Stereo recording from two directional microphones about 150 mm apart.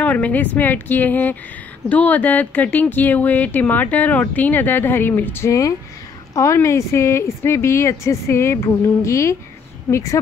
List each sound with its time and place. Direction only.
0.0 s a woman's voice: 10° left (ahead or behind)